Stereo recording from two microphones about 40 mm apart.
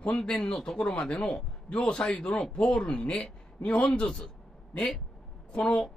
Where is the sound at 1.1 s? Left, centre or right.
Left.